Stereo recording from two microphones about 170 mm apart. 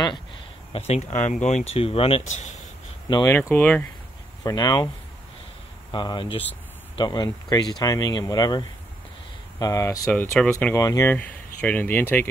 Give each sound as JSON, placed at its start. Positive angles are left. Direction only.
{"t": 0.7, "sound": "speech", "side_deg": 40}
{"t": 3.3, "sound": "speech", "side_deg": 10}
{"t": 4.4, "sound": "speech", "side_deg": 20}
{"t": 5.9, "sound": "speech", "side_deg": 25}